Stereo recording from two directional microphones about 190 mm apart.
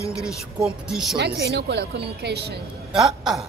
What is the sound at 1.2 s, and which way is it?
A woman's voice, 60° right (ahead or behind).